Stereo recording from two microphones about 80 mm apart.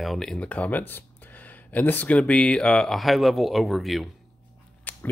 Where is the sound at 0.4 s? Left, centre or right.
Centre.